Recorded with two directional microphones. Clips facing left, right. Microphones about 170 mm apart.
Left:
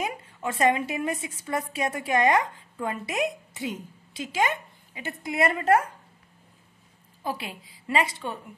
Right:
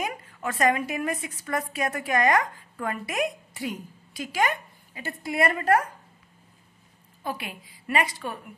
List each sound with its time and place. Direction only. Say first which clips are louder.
0.0 s a woman's voice: left 1 dB; 25° left (ahead or behind)
7.2 s a woman's voice: left 1 dB; 30° left (ahead or behind)